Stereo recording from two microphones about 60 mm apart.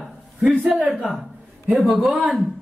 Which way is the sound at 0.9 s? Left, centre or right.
Centre.